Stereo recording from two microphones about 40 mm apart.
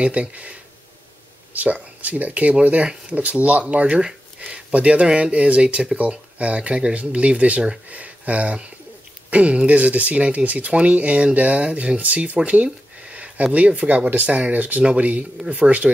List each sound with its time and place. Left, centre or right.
0.0 s speech: right
1.5 s speech: right
4.0 s a sound: right
5.0 s speech: right